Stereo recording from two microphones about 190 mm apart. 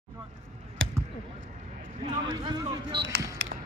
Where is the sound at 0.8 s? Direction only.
90° right.